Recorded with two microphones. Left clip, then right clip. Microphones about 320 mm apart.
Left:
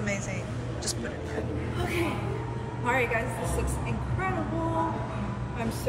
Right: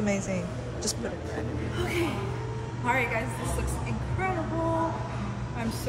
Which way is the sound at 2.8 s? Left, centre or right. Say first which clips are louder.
Even; centre.